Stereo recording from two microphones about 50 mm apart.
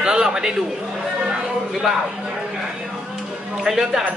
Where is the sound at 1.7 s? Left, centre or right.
Centre.